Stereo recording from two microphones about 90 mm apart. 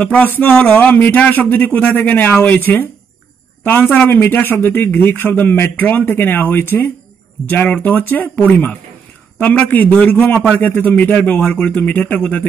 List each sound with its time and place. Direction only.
0.0 s a man's voice: 20° left (ahead or behind)
3.9 s a man's voice: 20° left (ahead or behind)